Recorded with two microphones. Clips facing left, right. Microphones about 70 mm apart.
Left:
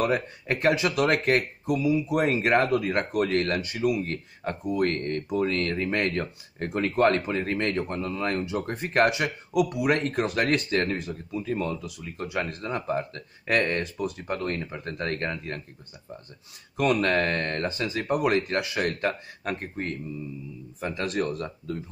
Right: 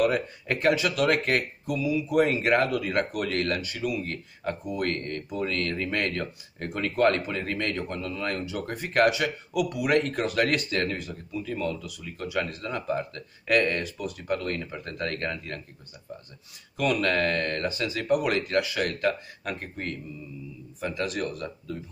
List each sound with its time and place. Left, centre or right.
0.0 s speech: left
16.7 s speech: left